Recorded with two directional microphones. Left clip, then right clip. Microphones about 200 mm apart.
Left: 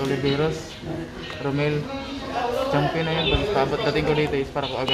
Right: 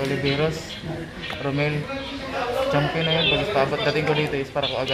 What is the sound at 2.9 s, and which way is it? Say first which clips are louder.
Speech: right 2 dB; 5° right (ahead or behind).